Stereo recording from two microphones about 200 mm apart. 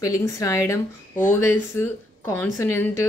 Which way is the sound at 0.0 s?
15° left (ahead or behind).